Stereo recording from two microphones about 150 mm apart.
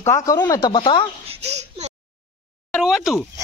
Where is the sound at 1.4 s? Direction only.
45° right (ahead or behind).